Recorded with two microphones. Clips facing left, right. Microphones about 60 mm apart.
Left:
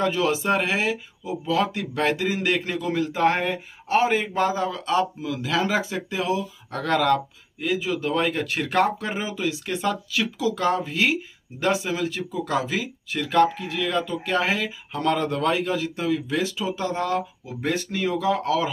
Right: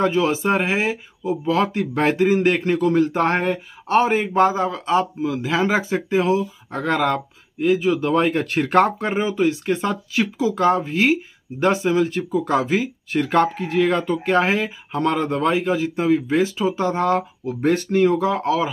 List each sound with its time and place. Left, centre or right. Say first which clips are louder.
0.0 s speech: right 4 dB; right
1.2 s a man's voice: right 4 dB; right
4.2 s speech: right 6 dB; right
6.7 s speech: even; centre
7.6 s speech: right 7 dB; right